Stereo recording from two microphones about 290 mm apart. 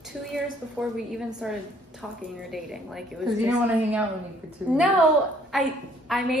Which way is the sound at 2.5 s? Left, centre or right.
Centre.